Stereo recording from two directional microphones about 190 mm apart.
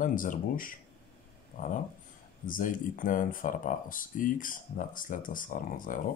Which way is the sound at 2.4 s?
45° left (ahead or behind).